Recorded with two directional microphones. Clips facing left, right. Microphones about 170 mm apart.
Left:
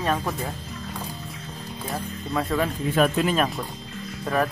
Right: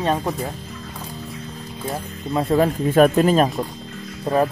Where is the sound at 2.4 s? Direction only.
35° right (ahead or behind).